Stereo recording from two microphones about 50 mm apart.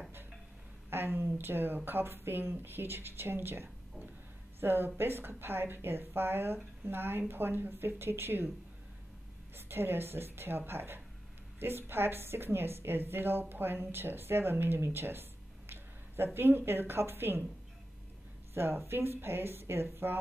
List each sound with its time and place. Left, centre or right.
0.8 s a woman's voice: right
9.6 s a woman's voice: right
16.3 s a woman's voice: right
18.5 s a woman's voice: right